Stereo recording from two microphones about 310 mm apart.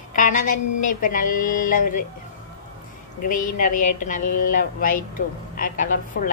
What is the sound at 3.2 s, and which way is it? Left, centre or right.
Speech, left.